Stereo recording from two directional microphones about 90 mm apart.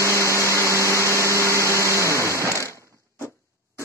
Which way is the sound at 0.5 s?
35° right (ahead or behind).